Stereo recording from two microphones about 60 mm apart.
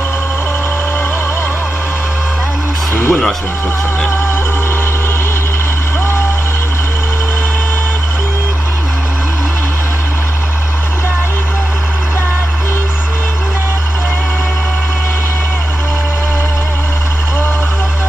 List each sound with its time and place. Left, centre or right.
2.9 s music: left